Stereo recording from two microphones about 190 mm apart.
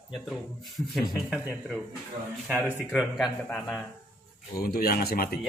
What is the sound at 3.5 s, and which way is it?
Speech, 10° left (ahead or behind).